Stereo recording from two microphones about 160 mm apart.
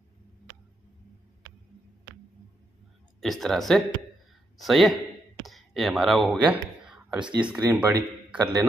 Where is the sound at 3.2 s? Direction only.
Centre (ahead or behind).